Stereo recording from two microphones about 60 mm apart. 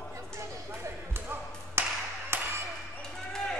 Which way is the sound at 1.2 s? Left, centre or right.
Right.